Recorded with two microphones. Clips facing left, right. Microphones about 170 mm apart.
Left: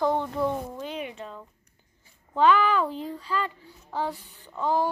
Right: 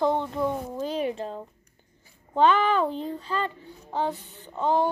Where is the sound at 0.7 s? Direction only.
35° right (ahead or behind).